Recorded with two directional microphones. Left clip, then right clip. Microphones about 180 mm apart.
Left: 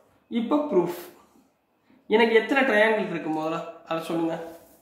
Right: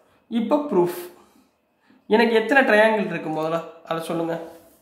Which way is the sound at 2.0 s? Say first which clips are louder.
Right 2 dB; 45° right (ahead or behind).